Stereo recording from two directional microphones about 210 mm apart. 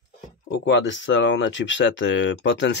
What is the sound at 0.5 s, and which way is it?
Speech, 55° left (ahead or behind).